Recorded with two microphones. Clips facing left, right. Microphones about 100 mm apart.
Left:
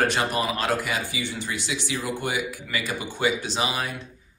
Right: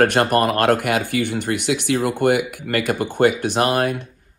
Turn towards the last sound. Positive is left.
turn(degrees=-55)  # may be behind; listen again after turning